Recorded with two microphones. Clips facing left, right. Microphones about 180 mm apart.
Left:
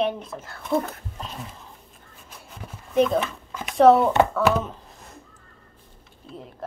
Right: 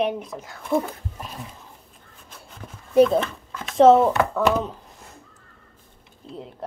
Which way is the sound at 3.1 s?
10° left (ahead or behind).